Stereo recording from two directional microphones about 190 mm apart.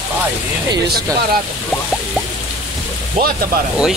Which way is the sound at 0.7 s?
20° right (ahead or behind).